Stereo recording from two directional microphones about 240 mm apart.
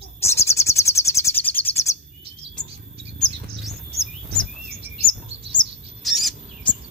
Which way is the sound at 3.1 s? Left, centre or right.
Centre.